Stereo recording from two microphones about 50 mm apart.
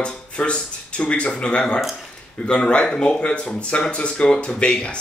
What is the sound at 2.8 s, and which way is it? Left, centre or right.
A man's voice, centre.